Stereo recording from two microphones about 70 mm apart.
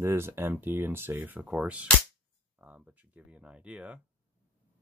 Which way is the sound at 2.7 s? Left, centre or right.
Centre.